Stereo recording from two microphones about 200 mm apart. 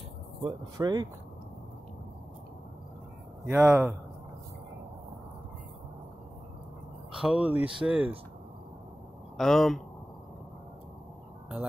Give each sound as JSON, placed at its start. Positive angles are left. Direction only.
{"t": 0.4, "sound": "speech", "side_deg": -20}
{"t": 3.4, "sound": "a man's voice", "side_deg": -10}
{"t": 7.2, "sound": "a man's voice", "side_deg": -5}
{"t": 9.4, "sound": "speech", "side_deg": 0}